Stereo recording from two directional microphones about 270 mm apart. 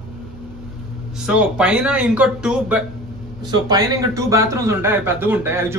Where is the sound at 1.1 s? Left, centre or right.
Centre.